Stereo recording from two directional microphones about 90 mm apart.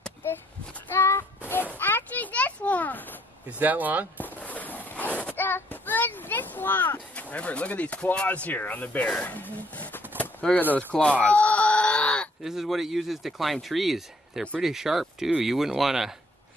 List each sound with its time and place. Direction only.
0.2 s child singing: 25° left (ahead or behind)
1.8 s a sound: 25° left (ahead or behind)
3.4 s speech: 20° right (ahead or behind)
4.2 s child singing: 20° left (ahead or behind)
10.4 s speech: 10° left (ahead or behind)
10.9 s a sound: 15° left (ahead or behind)
12.4 s speech: 5° right (ahead or behind)